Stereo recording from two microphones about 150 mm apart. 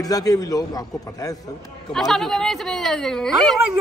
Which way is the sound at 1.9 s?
Centre (ahead or behind).